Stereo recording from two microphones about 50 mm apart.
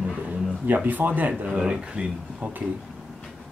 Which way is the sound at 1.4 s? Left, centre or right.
Centre.